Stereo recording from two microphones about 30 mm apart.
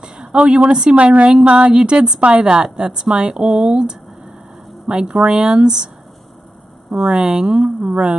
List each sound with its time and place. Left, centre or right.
0.0 s a woman's voice: right
0.9 s a woman's voice: right
6.9 s a woman's voice: right
7.9 s speech: right